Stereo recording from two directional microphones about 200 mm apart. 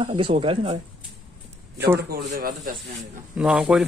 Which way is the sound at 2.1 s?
45° right (ahead or behind).